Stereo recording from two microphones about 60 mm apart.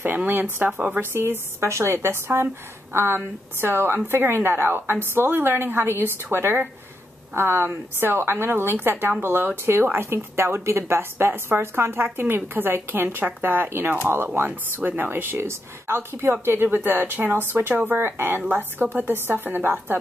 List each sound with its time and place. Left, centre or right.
0.0 s a woman's voice: right
1.6 s a woman's voice: right
14.8 s speech: right